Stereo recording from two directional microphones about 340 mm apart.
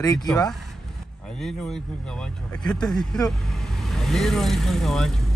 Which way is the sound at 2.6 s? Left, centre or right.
Centre.